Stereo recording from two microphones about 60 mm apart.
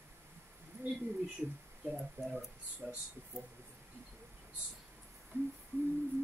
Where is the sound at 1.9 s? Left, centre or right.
Centre.